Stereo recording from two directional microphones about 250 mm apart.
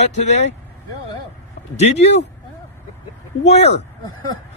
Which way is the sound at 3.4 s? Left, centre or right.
Left.